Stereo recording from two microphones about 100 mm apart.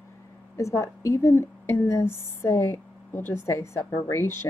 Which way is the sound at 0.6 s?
30° left (ahead or behind).